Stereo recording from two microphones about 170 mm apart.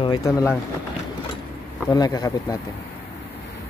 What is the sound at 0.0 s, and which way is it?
Speech, 20° left (ahead or behind).